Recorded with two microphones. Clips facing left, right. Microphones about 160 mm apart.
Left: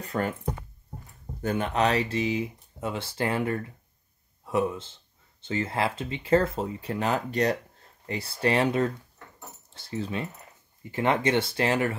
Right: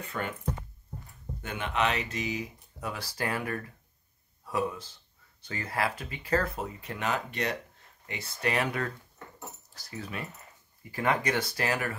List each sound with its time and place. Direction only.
0.0 s speech: 35° left (ahead or behind)
1.4 s speech: 40° left (ahead or behind)